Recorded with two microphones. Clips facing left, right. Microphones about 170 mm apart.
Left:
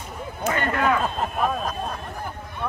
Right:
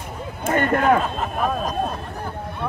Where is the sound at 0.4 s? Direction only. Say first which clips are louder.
Right 4 dB; 50° right (ahead or behind).